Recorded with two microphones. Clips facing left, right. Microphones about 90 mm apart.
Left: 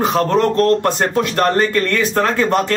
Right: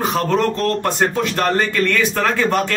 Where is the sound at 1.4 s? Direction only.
40° left (ahead or behind).